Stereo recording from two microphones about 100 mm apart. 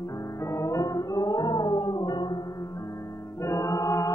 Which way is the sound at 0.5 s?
30° left (ahead or behind).